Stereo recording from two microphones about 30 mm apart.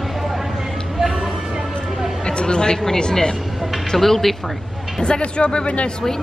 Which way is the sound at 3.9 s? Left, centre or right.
Centre.